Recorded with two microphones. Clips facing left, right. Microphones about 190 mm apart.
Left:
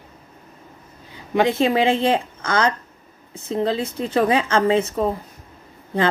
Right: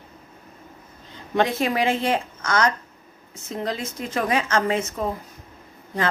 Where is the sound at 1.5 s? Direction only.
30° left (ahead or behind).